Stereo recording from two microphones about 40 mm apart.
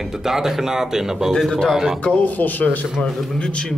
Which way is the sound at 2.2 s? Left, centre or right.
Left.